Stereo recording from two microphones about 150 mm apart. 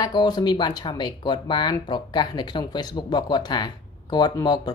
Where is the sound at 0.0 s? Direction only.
30° left (ahead or behind).